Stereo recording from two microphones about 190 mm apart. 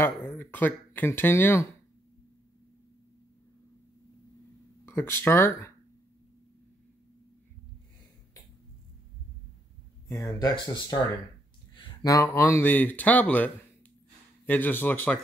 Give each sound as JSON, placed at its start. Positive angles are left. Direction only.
{"t": 0.0, "sound": "speech", "side_deg": 10}
{"t": 4.8, "sound": "speech", "side_deg": 15}
{"t": 10.0, "sound": "speech", "side_deg": 20}